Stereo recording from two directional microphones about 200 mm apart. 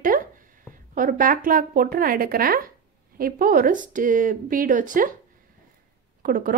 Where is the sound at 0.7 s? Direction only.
40° right (ahead or behind).